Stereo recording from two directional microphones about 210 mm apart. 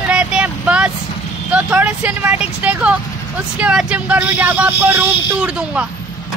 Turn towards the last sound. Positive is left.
turn(degrees=-5)  # may be behind; listen again after turning